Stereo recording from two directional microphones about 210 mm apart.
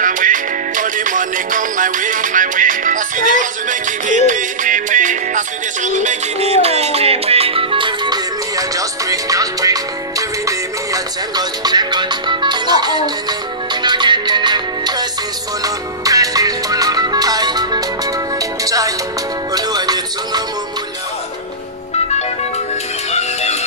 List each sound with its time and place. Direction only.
0.0 s music: 40° right (ahead or behind); by 20.4 s 20° right (ahead or behind)
23.1 s music: 30° left (ahead or behind)